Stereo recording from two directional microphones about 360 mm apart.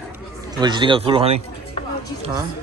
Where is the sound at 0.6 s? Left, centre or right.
Centre.